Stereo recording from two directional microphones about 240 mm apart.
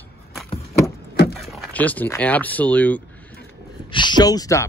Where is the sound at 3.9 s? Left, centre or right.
Centre.